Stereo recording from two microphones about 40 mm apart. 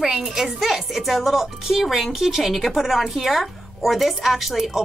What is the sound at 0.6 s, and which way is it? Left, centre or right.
A woman's voice, centre.